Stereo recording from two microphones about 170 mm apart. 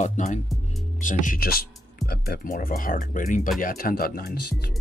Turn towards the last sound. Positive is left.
turn(degrees=60)  # may be behind; listen again after turning